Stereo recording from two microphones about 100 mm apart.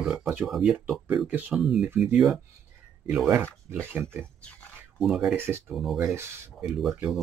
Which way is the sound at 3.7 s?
20° right (ahead or behind).